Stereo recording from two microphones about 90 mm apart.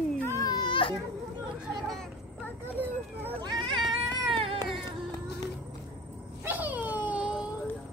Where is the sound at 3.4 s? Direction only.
55° right (ahead or behind).